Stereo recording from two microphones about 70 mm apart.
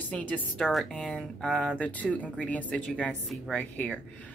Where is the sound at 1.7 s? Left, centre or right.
Left.